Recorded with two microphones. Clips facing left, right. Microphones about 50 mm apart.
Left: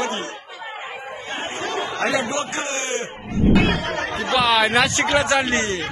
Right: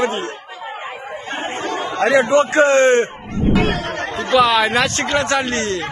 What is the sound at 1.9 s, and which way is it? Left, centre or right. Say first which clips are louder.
A man's voice: right 11 dB; right.